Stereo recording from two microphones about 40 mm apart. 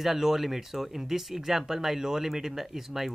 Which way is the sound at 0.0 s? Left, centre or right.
Centre.